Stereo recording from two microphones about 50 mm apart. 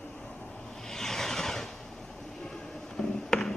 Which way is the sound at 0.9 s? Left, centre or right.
Centre.